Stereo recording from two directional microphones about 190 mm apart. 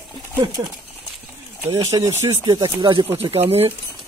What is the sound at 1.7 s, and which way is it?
Speech, 20° right (ahead or behind).